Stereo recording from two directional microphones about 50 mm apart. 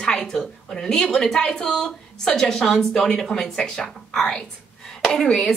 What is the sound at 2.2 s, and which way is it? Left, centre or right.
A woman's voice, centre.